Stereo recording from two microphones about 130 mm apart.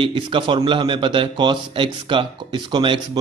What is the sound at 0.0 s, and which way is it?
A man's voice, 40° right (ahead or behind).